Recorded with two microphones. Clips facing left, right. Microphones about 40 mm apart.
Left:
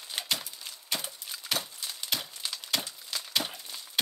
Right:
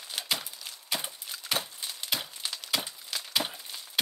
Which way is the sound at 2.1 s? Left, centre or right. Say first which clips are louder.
Right 1 dB; centre.